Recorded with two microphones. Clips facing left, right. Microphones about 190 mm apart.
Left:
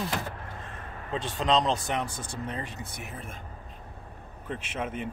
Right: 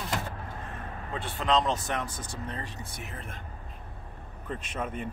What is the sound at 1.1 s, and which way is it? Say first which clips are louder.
Speech: left 1 dB; 20° left (ahead or behind).